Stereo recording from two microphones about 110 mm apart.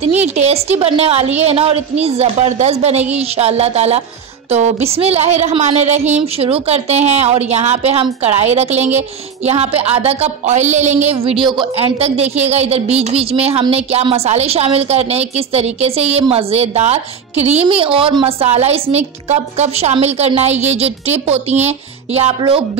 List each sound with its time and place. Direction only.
0.0 s a woman's voice: 85° right
4.5 s a woman's voice: 90° right; by 11.6 s 50° right (ahead or behind)
12.0 s a woman's voice: 75° right (ahead or behind)
14.1 s a woman's voice: 75° right (ahead or behind)